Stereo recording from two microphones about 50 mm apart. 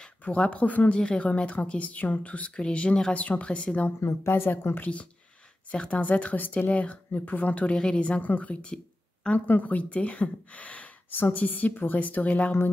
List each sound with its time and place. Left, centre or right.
0.2 s a woman's voice: left
0.9 s a woman's voice: centre
4.3 s a woman's voice: left
4.7 s a woman's voice: left
8.2 s a woman's voice: left